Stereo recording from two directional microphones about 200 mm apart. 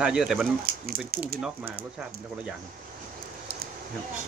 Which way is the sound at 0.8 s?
50° right (ahead or behind).